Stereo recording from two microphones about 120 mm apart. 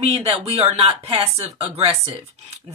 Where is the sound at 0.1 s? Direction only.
60° right (ahead or behind).